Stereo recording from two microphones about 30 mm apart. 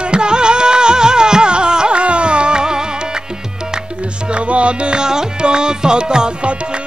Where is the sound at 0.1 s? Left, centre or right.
Right.